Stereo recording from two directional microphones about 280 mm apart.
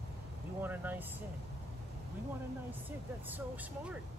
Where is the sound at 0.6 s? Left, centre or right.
Centre.